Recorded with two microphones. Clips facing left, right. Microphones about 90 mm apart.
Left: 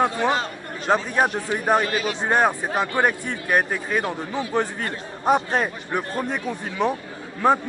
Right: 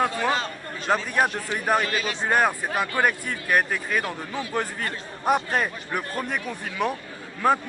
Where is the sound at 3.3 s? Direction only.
5° left (ahead or behind).